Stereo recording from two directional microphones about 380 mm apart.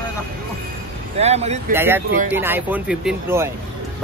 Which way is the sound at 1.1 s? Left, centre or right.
Centre.